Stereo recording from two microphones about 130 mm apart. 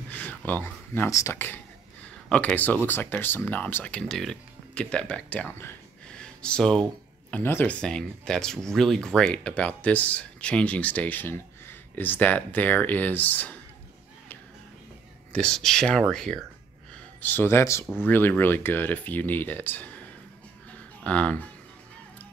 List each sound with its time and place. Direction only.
0.1 s a sound: 10° left (ahead or behind)
0.5 s speech: 15° left (ahead or behind)
6.0 s a sound: 5° left (ahead or behind)
7.8 s speech: 5° left (ahead or behind)
15.3 s speech: 5° left (ahead or behind)
17.2 s speech: 15° left (ahead or behind)
21.0 s speech: 10° left (ahead or behind)